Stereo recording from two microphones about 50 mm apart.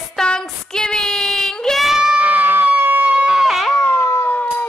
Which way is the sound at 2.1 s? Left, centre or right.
Right.